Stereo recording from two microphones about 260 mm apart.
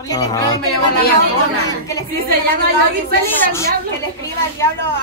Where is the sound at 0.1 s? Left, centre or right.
Centre.